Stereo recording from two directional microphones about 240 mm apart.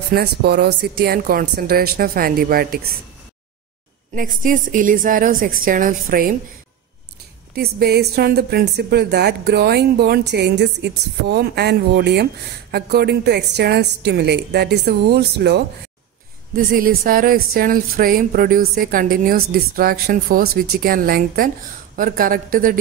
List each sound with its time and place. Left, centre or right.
0.1 s speech: right
4.1 s speech: right
7.5 s a woman's voice: right